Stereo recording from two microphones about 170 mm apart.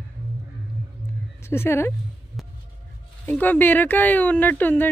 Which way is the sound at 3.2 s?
10° left (ahead or behind).